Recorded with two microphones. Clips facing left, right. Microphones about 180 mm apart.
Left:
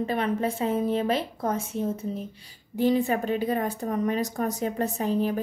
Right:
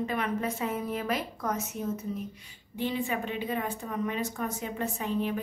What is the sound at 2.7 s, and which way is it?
A woman's voice, 40° left (ahead or behind).